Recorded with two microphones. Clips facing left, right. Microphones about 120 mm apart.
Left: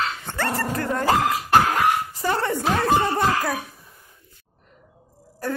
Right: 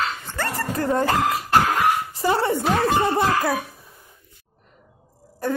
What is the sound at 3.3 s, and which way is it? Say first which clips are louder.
Speech: right 3 dB; 15° right (ahead or behind).